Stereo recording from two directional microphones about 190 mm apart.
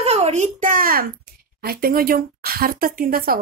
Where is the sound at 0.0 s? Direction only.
35° right (ahead or behind).